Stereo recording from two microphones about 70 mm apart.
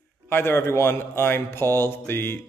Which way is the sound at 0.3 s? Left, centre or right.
Left.